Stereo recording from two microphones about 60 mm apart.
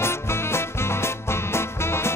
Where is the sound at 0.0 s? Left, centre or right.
Left.